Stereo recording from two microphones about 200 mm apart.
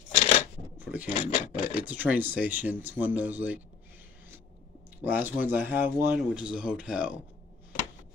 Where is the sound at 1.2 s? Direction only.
30° left (ahead or behind).